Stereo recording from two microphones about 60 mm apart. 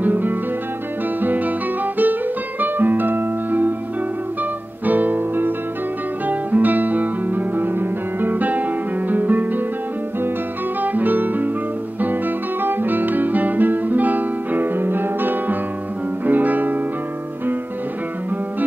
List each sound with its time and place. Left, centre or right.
0.0 s music: right
2.6 s music: right
4.8 s music: right
6.2 s guitar: right
10.8 s music: right
12.0 s guitar: right
16.3 s music: right